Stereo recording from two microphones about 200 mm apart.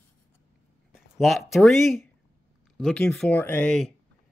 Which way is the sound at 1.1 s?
Centre (ahead or behind).